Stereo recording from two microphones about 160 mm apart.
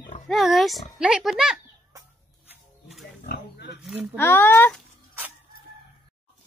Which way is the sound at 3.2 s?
85° left.